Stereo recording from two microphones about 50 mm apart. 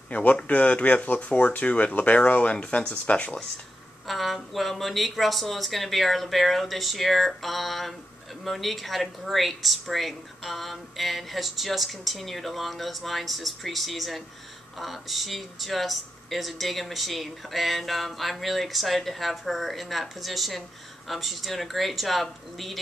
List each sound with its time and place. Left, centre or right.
0.1 s speech: left
4.1 s speech: centre